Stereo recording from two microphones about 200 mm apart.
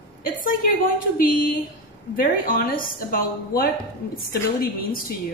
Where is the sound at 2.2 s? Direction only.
45° left (ahead or behind).